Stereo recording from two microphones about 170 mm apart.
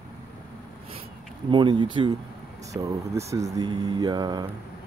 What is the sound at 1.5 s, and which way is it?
Speech, 25° right (ahead or behind).